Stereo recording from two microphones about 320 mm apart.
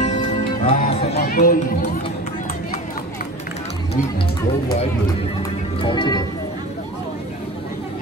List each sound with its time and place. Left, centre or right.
0.0 s music: left
5.8 s speech: centre